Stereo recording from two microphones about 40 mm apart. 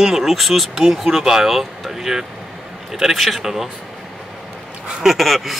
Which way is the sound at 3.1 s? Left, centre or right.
Centre.